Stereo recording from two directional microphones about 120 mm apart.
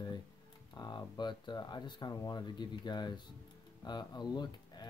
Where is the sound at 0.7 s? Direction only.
35° left (ahead or behind).